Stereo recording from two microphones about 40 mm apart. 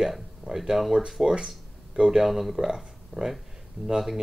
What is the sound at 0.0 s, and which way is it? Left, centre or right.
Speech, centre.